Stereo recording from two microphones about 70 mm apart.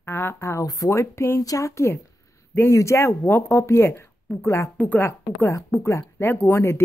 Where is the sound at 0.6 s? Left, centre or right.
Left.